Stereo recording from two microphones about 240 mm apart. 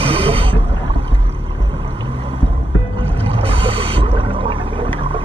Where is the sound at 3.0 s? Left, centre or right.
Right.